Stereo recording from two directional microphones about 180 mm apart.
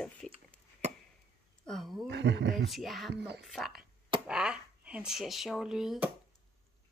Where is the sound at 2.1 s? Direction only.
75° right (ahead or behind).